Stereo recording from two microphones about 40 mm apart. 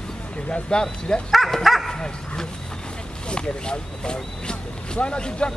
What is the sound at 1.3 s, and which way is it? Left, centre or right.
Speech, centre.